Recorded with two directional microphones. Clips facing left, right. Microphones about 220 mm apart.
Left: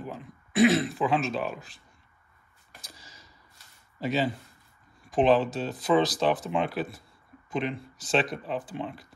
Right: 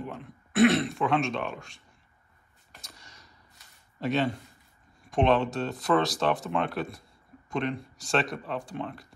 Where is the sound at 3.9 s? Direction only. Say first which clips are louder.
Even; centre (ahead or behind).